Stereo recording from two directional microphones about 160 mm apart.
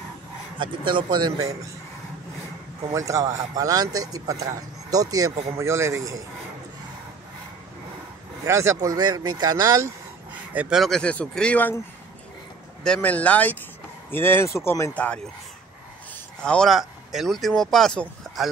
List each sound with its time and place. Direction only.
0.6 s speech: 30° right (ahead or behind)
2.9 s speech: 20° right (ahead or behind)
8.5 s speech: 20° right (ahead or behind)
10.5 s speech: 5° right (ahead or behind); by 11.8 s 10° left (ahead or behind)
12.8 s speech: 5° left (ahead or behind)
16.4 s speech: 5° left (ahead or behind)